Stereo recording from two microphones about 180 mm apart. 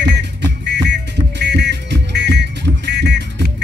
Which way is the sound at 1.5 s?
70° right (ahead or behind).